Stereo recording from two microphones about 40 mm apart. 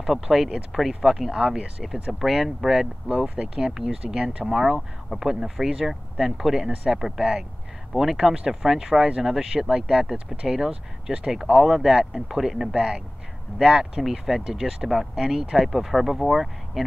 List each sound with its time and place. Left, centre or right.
0.0 s speech: centre
4.7 s speech: centre
5.3 s speech: centre